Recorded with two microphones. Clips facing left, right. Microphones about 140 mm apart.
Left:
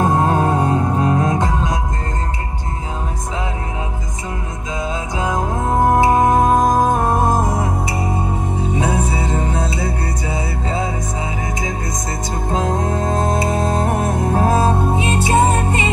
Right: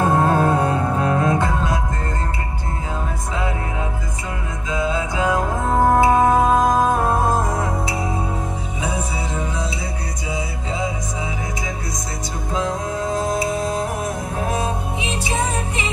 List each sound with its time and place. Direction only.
0.1 s music: 15° left (ahead or behind)
5.1 s music: 15° left (ahead or behind)
9.1 s music: 55° left (ahead or behind)
12.4 s music: 55° left (ahead or behind)
14.3 s music: 35° left (ahead or behind)
14.7 s music: 60° left (ahead or behind)